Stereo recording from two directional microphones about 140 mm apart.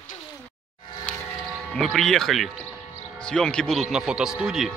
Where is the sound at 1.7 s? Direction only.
Centre (ahead or behind).